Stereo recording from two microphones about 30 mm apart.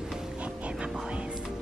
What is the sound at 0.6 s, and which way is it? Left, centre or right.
Music, right.